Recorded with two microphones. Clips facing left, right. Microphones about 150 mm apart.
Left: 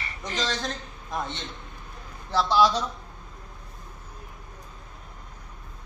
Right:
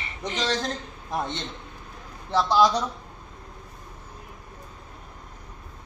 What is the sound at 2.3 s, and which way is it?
Speech, 15° right (ahead or behind).